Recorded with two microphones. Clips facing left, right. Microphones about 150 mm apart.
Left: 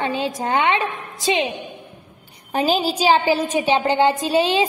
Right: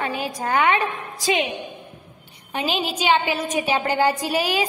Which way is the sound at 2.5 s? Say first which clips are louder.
Left 5 dB; 35° left (ahead or behind).